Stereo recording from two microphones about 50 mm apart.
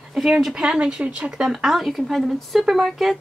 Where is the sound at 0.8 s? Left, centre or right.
Right.